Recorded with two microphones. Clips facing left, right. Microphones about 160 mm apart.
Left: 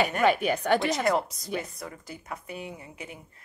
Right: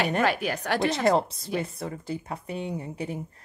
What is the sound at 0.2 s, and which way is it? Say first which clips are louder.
Speech: left 2 dB; centre (ahead or behind).